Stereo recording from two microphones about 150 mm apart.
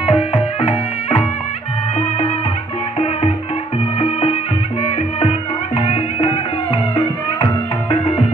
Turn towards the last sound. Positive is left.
turn(degrees=35)  # may be behind; listen again after turning